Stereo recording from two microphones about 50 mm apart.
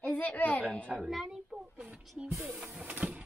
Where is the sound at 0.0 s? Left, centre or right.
Left.